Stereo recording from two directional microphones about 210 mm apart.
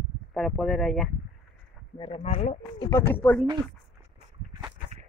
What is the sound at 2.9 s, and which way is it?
Speech, 10° left (ahead or behind).